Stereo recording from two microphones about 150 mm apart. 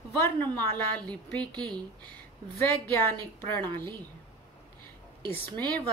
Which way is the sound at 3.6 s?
30° right (ahead or behind).